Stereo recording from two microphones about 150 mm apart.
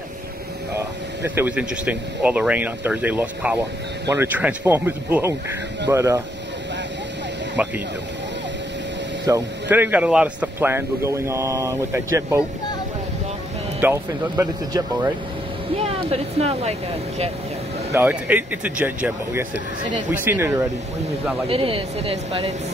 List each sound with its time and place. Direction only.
0.7 s speech: 15° right (ahead or behind)
7.6 s speech: 10° right (ahead or behind)
9.2 s speech: 15° right (ahead or behind)
13.7 s speech: 15° right (ahead or behind)
15.7 s speech: 40° right (ahead or behind)
17.9 s speech: 10° right (ahead or behind)
21.5 s speech: 40° right (ahead or behind)